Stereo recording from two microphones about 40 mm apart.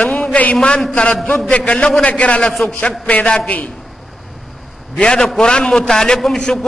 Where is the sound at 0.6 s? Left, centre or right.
Centre.